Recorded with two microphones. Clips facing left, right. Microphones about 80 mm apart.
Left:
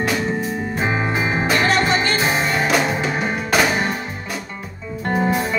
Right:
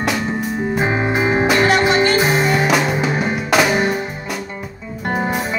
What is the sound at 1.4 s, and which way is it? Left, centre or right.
Music, centre.